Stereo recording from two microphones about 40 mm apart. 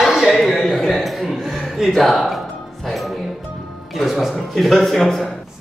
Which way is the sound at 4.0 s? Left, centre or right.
Centre.